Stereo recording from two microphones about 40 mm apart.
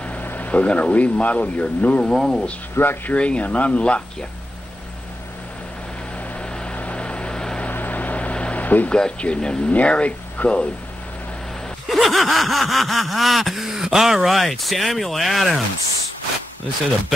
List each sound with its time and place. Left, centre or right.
0.2 s vehicle: left
0.5 s speech: left
2.0 s speech: centre
2.7 s speech: left
3.2 s speech: left
6.4 s vehicle: left
7.7 s vehicle: left
8.6 s a sound: left
9.2 s speech: left
11.9 s vehicle: centre